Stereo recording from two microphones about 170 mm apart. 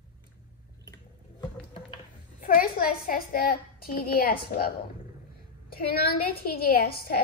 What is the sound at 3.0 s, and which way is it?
A woman's voice, 60° left (ahead or behind).